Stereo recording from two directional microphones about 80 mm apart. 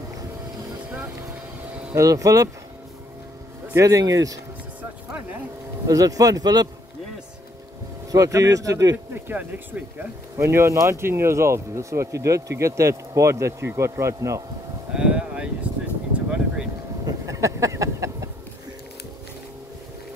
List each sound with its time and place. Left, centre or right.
2.0 s speech: right
3.7 s speech: right
5.9 s speech: right
8.1 s speech: right
9.1 s speech: right
10.3 s speech: right
15.0 s a sound: centre
17.0 s a sound: right